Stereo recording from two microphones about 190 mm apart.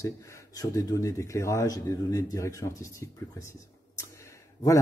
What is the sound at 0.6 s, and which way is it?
Speech, 15° left (ahead or behind).